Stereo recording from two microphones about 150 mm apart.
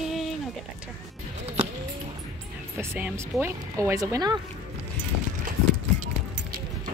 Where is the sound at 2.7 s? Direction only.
15° right (ahead or behind).